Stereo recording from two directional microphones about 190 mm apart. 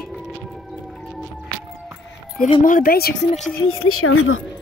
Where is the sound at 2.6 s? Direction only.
45° left (ahead or behind).